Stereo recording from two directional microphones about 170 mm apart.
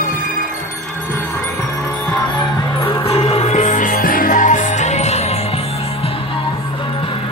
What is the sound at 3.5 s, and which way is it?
Music, 50° left (ahead or behind).